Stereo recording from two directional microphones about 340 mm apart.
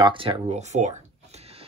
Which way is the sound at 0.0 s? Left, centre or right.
Centre.